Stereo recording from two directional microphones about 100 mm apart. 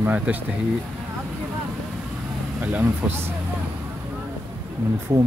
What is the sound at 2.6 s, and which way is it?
Speech, 15° right (ahead or behind).